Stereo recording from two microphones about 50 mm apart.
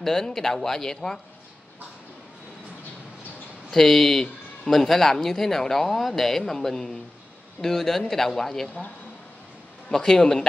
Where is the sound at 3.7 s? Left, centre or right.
Centre.